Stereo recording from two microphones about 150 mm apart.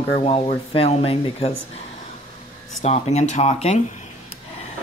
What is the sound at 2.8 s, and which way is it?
Speech, 45° left (ahead or behind).